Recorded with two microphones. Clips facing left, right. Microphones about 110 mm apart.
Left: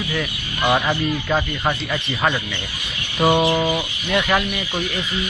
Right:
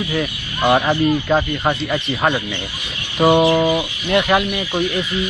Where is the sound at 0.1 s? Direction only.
20° right (ahead or behind).